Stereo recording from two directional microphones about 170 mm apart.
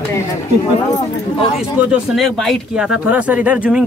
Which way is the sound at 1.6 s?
5° right (ahead or behind).